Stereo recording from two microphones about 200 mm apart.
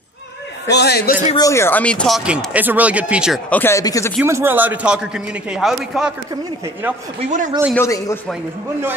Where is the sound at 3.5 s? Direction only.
10° left (ahead or behind).